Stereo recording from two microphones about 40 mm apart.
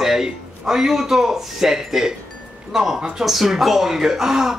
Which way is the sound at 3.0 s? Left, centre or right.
Centre.